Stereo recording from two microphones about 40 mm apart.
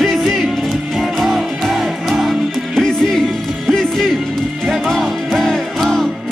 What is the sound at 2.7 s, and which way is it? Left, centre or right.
Music, centre.